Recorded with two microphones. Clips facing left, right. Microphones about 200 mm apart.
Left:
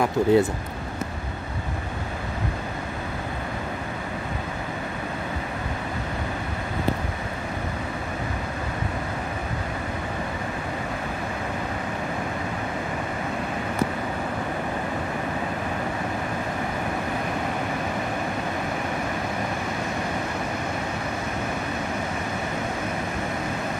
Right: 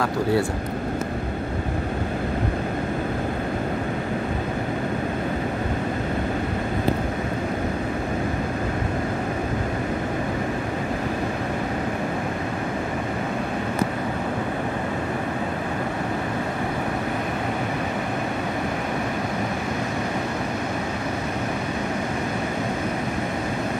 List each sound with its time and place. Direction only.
0.0 s speech: 20° left (ahead or behind)